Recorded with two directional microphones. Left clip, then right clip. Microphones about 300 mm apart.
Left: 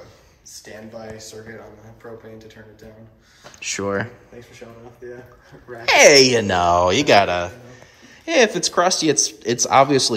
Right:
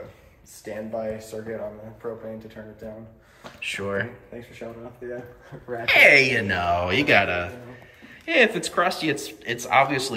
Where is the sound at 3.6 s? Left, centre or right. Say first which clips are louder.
Left 4 dB; centre.